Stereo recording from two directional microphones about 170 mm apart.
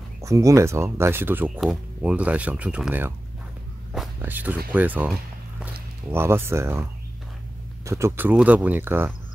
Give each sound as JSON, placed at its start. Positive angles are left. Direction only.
{"t": 0.2, "sound": "speech", "side_deg": -20}
{"t": 4.2, "sound": "speech", "side_deg": -10}
{"t": 6.1, "sound": "speech", "side_deg": -15}